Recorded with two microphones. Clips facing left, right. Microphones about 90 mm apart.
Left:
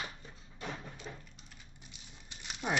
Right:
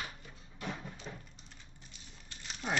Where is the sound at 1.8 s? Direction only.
15° left (ahead or behind).